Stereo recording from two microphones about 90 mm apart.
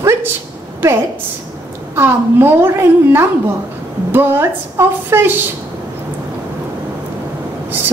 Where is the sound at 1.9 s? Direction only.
25° right (ahead or behind).